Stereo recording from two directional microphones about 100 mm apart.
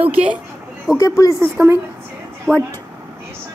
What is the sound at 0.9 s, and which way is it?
Speech, 35° left (ahead or behind).